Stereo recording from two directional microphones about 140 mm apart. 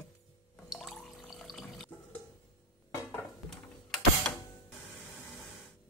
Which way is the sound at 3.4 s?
5° left (ahead or behind).